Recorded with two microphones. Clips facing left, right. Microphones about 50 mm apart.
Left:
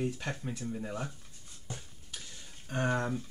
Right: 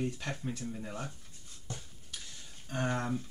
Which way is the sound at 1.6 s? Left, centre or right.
Centre.